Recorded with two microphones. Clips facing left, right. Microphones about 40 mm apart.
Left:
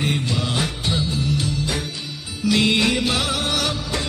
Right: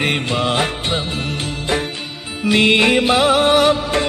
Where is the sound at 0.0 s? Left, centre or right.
Right.